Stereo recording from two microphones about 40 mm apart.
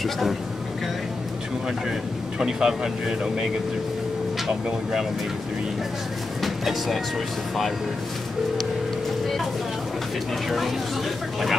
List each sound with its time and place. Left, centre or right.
0.0 s speech: centre
1.9 s speech: centre
6.4 s music: centre